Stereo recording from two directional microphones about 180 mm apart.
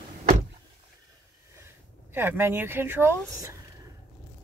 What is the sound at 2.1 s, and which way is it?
A woman's voice, 10° right (ahead or behind).